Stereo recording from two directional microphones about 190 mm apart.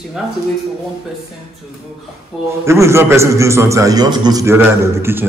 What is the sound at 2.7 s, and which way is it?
A man's voice, 15° right (ahead or behind).